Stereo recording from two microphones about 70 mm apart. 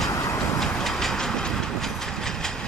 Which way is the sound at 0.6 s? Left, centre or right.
Centre.